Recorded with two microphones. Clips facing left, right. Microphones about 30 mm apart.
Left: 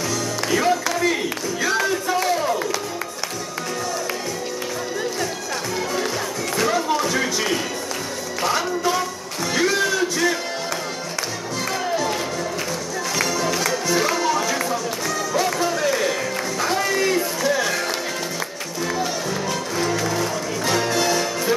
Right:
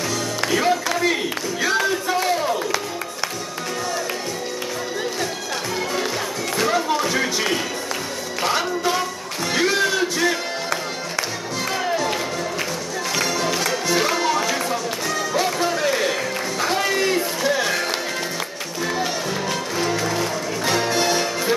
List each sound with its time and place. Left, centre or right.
0.4 s music: centre
6.5 s a sound: centre
8.4 s music: centre
19.5 s music: centre